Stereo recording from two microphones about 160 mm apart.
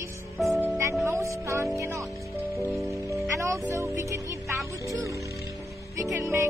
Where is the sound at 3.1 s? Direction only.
20° right (ahead or behind).